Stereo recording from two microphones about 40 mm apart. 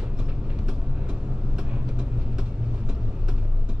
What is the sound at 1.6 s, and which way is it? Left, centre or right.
Vehicle, right.